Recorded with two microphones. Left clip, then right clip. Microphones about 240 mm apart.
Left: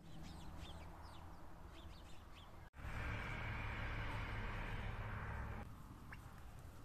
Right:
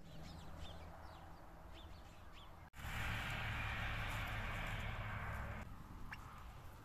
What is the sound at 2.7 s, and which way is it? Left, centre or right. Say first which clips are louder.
Vehicle: right 4 dB; right.